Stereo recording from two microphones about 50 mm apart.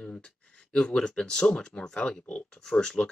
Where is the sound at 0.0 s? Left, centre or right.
Centre.